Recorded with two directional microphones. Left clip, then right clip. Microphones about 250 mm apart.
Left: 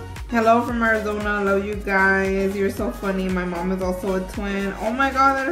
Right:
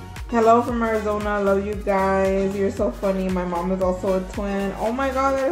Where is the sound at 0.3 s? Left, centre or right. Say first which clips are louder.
Right 1 dB; centre.